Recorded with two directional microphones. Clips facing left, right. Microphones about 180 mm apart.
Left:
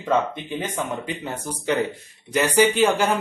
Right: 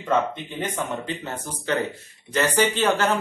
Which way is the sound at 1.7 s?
15° left (ahead or behind).